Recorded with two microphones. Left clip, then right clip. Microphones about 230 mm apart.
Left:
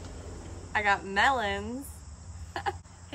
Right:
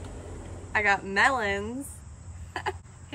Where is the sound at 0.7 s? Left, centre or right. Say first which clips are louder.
Right 2 dB; centre.